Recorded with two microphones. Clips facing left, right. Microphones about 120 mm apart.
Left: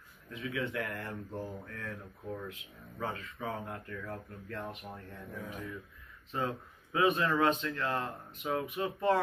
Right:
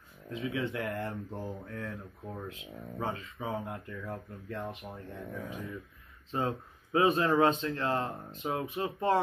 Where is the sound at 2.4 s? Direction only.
25° right (ahead or behind).